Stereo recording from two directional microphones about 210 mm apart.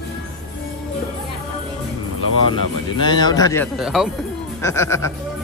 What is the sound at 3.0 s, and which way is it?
Speech, 20° left (ahead or behind).